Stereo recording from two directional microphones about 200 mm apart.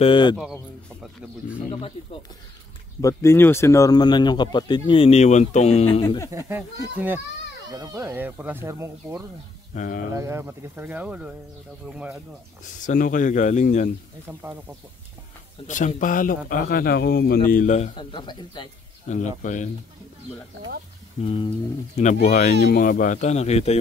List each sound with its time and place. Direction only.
0.0 s speech: 25° left (ahead or behind)
3.0 s speech: 15° left (ahead or behind); by 6.0 s 30° left (ahead or behind)
6.0 s speech: 15° left (ahead or behind)
7.7 s speech: 20° right (ahead or behind)
9.8 s speech: 45° left (ahead or behind)
10.1 s speech: 15° right (ahead or behind)
12.6 s speech: 40° left (ahead or behind)
15.6 s speech: 35° left (ahead or behind)
18.1 s speech: 20° left (ahead or behind)
19.0 s speech: 40° left (ahead or behind)
21.2 s speech: 30° left (ahead or behind)
22.3 s speech: 40° left (ahead or behind)